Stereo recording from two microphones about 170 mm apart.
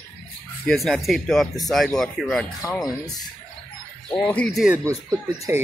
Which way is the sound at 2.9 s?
20° left (ahead or behind).